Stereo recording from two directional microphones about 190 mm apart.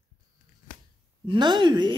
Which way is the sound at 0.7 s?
40° left (ahead or behind).